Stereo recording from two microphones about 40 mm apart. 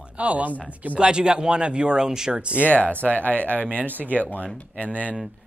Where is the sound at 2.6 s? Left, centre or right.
Left.